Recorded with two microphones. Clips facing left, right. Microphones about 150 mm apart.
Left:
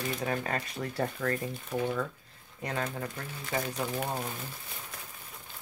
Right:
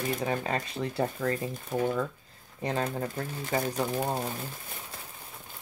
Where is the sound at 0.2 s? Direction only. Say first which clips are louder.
Right 2 dB; 25° right (ahead or behind).